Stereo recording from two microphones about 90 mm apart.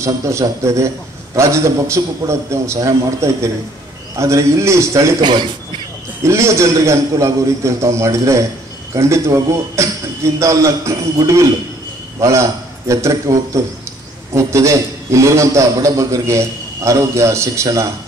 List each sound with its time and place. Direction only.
0.0 s a man's voice: 35° right (ahead or behind)
5.2 s a man's voice: 60° right (ahead or behind)
6.2 s a man's voice: 35° right (ahead or behind)